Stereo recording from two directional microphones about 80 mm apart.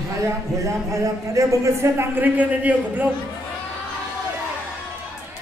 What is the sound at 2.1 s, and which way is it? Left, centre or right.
Speech, right.